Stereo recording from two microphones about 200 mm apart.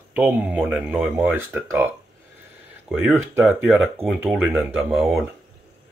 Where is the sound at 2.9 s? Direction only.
10° right (ahead or behind).